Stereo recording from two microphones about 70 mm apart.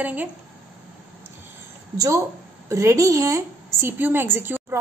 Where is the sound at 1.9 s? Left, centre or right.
Right.